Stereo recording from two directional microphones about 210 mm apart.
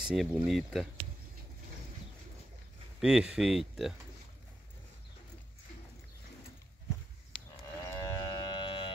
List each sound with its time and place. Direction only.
0.0 s speech: centre (ahead or behind)
3.0 s speech: 5° right (ahead or behind)
7.8 s livestock: 15° left (ahead or behind)